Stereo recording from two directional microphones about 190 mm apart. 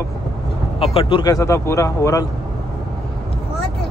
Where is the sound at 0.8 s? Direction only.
30° left (ahead or behind).